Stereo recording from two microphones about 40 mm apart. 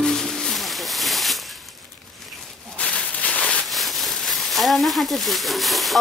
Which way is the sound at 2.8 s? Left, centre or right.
Left.